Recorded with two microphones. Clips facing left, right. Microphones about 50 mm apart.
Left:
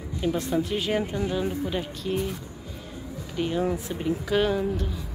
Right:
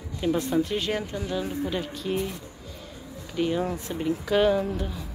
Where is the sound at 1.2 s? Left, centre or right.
Centre.